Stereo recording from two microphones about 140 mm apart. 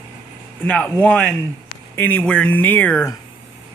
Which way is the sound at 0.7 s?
10° left (ahead or behind).